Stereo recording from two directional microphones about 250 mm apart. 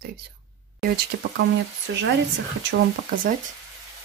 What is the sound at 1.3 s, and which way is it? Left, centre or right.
Speech, right.